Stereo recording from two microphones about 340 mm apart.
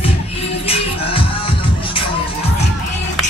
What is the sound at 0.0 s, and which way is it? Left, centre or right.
Music, centre.